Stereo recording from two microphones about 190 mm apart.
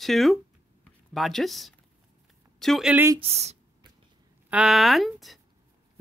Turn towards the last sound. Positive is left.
turn(degrees=0)  # may be behind; listen again after turning